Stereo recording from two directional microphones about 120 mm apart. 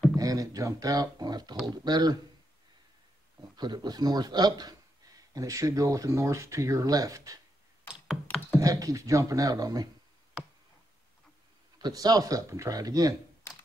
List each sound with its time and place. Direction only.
0.1 s speech: 30° right (ahead or behind)
3.5 s speech: 35° right (ahead or behind)
8.5 s speech: 30° right (ahead or behind)
11.8 s speech: 35° right (ahead or behind)